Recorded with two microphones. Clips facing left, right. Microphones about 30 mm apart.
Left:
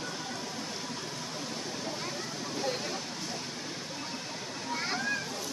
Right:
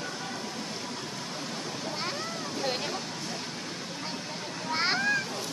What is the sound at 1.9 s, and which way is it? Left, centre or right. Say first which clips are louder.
Vehicle: right 3 dB; right.